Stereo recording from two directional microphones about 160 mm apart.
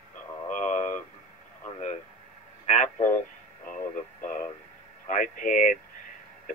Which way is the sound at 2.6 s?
45° left (ahead or behind).